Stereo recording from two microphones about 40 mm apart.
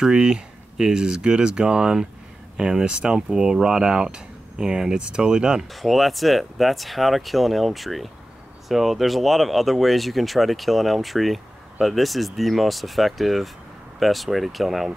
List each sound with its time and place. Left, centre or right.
0.0 s speech: centre
5.7 s speech: centre